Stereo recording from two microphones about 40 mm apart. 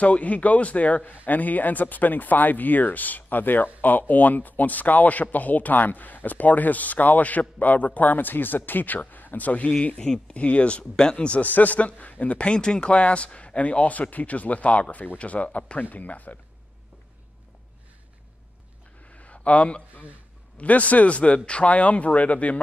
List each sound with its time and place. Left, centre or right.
0.0 s speech: left; by 10.3 s centre
10.3 s a man's voice: left
11.4 s a man's voice: left
19.0 s a sound: left
20.5 s a man's voice: left